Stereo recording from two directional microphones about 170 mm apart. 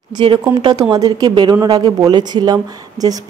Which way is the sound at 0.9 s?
25° right (ahead or behind).